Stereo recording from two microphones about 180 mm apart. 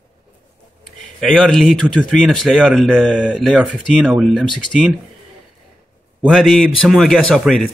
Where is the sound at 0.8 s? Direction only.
Centre (ahead or behind).